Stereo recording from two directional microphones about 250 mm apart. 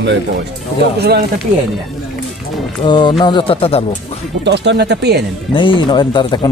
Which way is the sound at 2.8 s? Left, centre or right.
Centre.